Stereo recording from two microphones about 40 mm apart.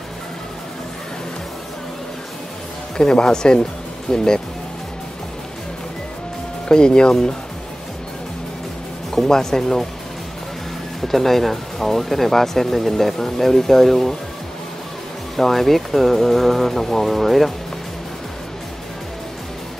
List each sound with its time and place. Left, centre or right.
3.0 s speech: centre
6.7 s speech: left
9.1 s speech: centre
11.0 s speech: centre
15.3 s speech: centre